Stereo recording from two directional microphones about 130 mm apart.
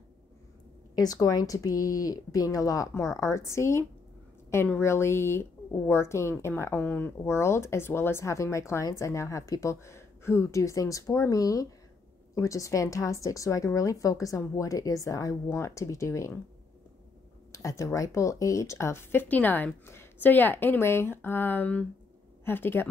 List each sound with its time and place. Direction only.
0.9 s a woman's voice: 30° left (ahead or behind)
17.5 s a woman's voice: 25° left (ahead or behind)